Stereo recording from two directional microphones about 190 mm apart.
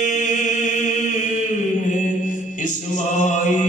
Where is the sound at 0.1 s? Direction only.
40° left (ahead or behind).